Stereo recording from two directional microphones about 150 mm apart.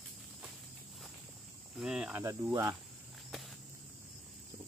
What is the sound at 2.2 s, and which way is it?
Cricket, 20° right (ahead or behind).